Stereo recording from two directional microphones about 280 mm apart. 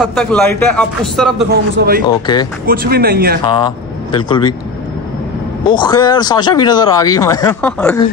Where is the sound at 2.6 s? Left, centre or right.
Right.